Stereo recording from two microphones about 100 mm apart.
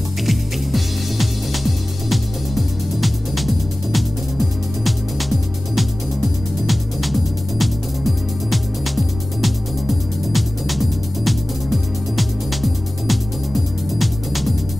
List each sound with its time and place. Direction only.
0.3 s music: centre (ahead or behind)
13.9 s music: centre (ahead or behind)